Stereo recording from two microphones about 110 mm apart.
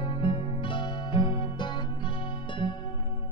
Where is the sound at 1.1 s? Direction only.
45° left (ahead or behind).